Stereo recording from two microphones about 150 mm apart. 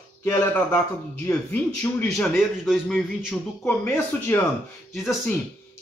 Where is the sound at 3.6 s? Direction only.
10° left (ahead or behind).